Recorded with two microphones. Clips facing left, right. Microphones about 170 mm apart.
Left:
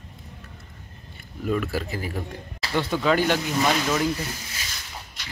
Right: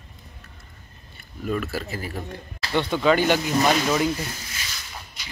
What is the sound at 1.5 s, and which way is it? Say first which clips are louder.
Speech: left 1 dB; 15° left (ahead or behind).